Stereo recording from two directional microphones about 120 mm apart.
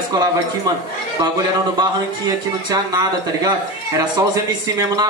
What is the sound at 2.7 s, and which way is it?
Speech, 35° right (ahead or behind).